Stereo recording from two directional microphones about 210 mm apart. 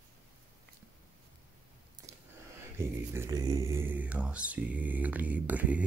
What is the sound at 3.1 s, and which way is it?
Mantra, 15° right (ahead or behind).